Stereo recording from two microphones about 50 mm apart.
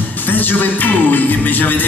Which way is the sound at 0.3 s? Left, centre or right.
Left.